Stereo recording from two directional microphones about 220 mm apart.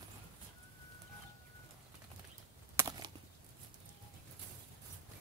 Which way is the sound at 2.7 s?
15° right (ahead or behind).